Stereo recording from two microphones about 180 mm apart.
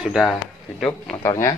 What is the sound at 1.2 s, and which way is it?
Speech, 20° left (ahead or behind).